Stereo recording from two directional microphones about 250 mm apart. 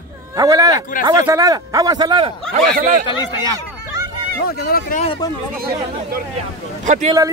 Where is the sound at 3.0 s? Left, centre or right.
Centre.